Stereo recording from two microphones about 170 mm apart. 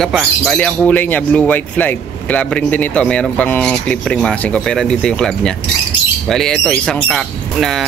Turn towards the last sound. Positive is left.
turn(degrees=0)  # may be behind; listen again after turning